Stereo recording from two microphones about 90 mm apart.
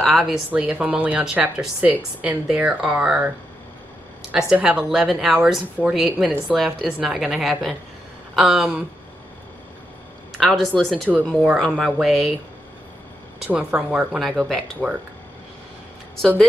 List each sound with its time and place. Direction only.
0.0 s a woman's voice: centre (ahead or behind)
0.5 s speech: 15° right (ahead or behind)
4.3 s a woman's voice: 10° right (ahead or behind)
10.3 s a woman's voice: centre (ahead or behind)
11.1 s speech: 15° right (ahead or behind)
11.8 s a woman's voice: 5° right (ahead or behind)
13.5 s a woman's voice: 15° right (ahead or behind)